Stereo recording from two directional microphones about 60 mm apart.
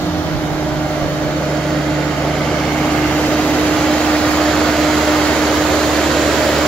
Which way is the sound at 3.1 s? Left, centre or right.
Centre.